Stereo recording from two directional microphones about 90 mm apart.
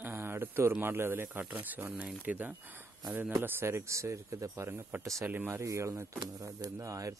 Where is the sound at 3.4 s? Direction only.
30° right (ahead or behind).